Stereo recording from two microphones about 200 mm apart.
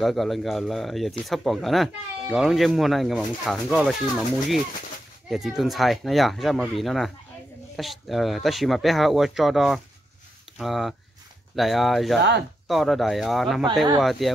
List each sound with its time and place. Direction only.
0.0 s speech: centre (ahead or behind)
5.3 s speech: centre (ahead or behind)
12.2 s speech: 60° right (ahead or behind)
12.6 s speech: centre (ahead or behind)